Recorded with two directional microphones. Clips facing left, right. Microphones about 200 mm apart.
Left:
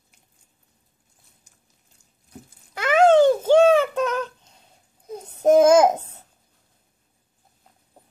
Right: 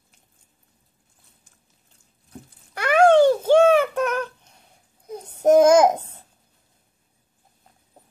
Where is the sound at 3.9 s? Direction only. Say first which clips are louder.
Even; 20° left (ahead or behind).